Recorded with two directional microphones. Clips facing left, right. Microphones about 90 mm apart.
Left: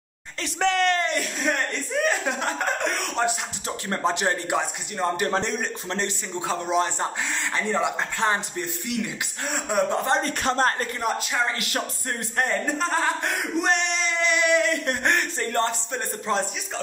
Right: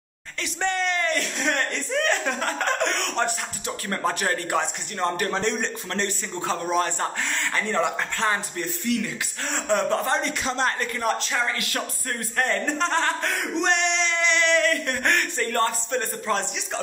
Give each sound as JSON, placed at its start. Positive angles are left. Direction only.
{"t": 0.6, "sound": "speech", "side_deg": 90}
{"t": 1.2, "sound": "speech", "side_deg": 5}
{"t": 3.6, "sound": "speech", "side_deg": 25}
{"t": 9.8, "sound": "speech", "side_deg": 25}
{"t": 10.2, "sound": "speech", "side_deg": 50}
{"t": 11.0, "sound": "speech", "side_deg": 10}
{"t": 11.4, "sound": "speech", "side_deg": 25}
{"t": 12.4, "sound": "speech", "side_deg": 10}
{"t": 13.6, "sound": "music", "side_deg": 0}
{"t": 14.9, "sound": "speech", "side_deg": 20}